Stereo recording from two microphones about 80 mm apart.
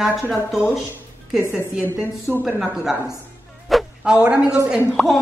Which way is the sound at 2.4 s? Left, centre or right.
Centre.